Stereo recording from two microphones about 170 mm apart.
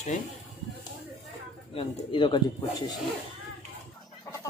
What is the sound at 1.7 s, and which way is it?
Speech, 30° left (ahead or behind).